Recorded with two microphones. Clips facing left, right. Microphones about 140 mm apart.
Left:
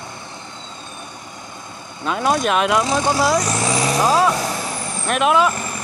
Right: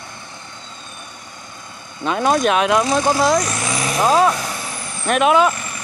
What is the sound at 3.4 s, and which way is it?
Vehicle, 30° left (ahead or behind).